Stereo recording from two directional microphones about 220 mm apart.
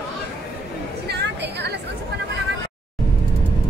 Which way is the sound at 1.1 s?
50° right (ahead or behind).